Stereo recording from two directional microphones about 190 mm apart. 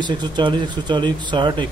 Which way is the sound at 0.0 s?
25° right (ahead or behind).